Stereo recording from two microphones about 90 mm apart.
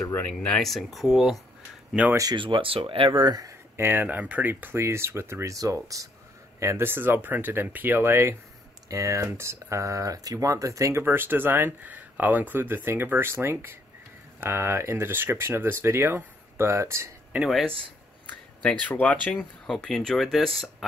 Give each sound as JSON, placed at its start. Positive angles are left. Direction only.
{"t": 0.0, "sound": "speech", "side_deg": 25}
{"t": 0.3, "sound": "speech", "side_deg": 10}
{"t": 2.0, "sound": "speech", "side_deg": -10}
{"t": 2.3, "sound": "speech", "side_deg": -70}
{"t": 3.7, "sound": "speech", "side_deg": -25}
{"t": 6.6, "sound": "speech", "side_deg": -30}
{"t": 17.4, "sound": "speech", "side_deg": 0}
{"t": 18.6, "sound": "speech", "side_deg": 15}
{"t": 19.3, "sound": "speech", "side_deg": 5}